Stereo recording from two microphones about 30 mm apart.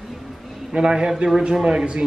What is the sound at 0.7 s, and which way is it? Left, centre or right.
Speech, right.